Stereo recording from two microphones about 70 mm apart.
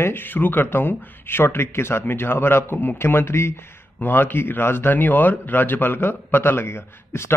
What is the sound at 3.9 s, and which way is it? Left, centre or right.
A man's voice, left.